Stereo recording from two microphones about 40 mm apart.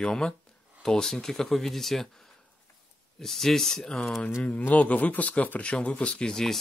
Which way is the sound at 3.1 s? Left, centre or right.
Centre.